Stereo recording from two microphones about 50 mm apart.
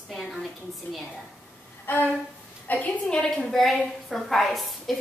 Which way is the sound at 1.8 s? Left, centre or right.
Left.